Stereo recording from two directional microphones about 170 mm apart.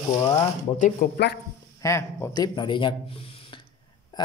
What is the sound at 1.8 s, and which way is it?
A woman's voice, 15° left (ahead or behind).